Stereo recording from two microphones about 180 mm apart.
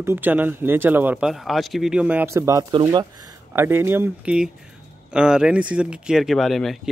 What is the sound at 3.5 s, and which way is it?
Speech, 15° right (ahead or behind).